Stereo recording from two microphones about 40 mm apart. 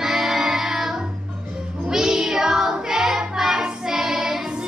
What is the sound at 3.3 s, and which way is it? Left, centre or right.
Child singing, centre.